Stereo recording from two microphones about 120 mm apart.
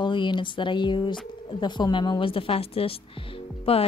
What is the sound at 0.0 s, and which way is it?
Speech, 40° left (ahead or behind).